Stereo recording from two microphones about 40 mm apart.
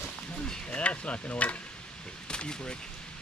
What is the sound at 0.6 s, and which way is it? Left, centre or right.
Stir, left.